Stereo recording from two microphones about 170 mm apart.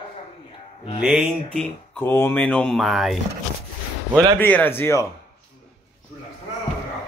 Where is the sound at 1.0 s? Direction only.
5° right (ahead or behind).